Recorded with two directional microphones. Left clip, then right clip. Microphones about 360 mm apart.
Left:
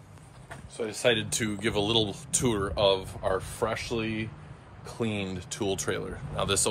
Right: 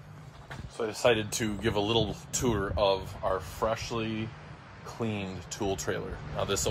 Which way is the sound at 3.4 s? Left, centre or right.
Centre.